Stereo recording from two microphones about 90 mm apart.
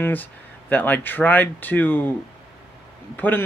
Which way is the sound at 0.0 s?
20° left (ahead or behind).